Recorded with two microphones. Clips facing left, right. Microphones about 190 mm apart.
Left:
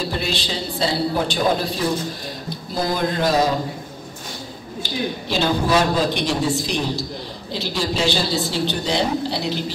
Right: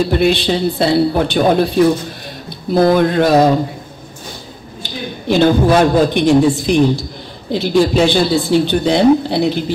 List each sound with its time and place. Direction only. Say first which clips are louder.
0.1 s a woman's voice: right 12 dB; 60° right (ahead or behind)
5.3 s a woman's voice: right 9 dB; 55° right (ahead or behind)